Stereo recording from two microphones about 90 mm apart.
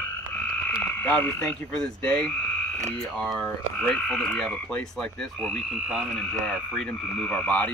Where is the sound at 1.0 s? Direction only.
20° left (ahead or behind).